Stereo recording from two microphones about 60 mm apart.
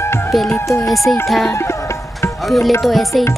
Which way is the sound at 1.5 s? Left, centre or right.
Left.